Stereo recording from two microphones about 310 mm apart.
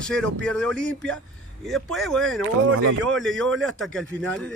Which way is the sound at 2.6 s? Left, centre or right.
Right.